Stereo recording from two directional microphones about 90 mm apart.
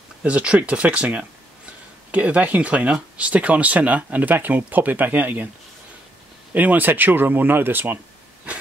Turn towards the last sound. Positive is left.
turn(degrees=-20)  # may be behind; listen again after turning